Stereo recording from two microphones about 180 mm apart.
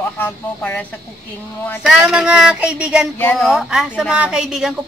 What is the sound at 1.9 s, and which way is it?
Speech, 5° right (ahead or behind).